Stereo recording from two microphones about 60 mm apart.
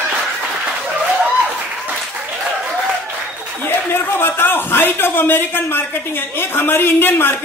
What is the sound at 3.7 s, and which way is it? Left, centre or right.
A man's voice, left.